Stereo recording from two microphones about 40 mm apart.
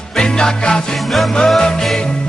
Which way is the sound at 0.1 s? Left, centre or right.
Centre.